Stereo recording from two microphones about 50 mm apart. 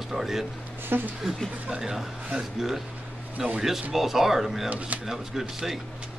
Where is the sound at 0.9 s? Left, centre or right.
Right.